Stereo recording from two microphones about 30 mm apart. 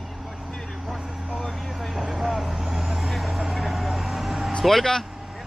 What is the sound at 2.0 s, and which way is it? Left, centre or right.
Vehicle, centre.